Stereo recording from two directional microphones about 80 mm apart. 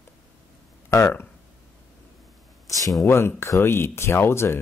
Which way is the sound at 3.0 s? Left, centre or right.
Left.